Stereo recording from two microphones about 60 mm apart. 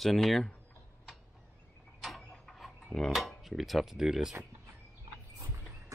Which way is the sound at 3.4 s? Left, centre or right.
Centre.